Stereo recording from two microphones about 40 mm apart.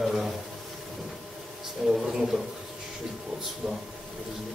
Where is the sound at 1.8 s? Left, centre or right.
Centre.